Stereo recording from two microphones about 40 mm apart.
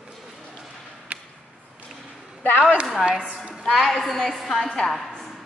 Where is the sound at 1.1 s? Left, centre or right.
Right.